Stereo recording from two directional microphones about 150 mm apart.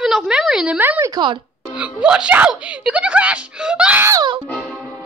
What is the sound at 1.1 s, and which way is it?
Speech, 30° right (ahead or behind).